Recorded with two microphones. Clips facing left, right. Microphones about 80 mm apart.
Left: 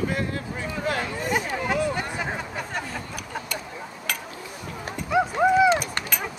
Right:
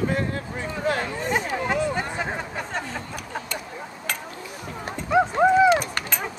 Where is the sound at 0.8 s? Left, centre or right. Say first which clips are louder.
Right 2 dB; centre.